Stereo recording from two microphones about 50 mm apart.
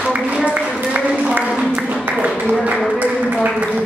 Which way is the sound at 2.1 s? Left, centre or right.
Right.